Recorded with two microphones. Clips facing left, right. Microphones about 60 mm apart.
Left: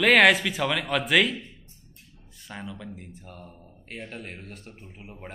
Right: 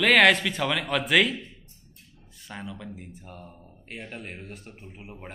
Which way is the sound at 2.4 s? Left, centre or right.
Centre.